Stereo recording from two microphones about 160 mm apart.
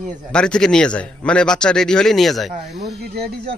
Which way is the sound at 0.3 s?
5° left (ahead or behind).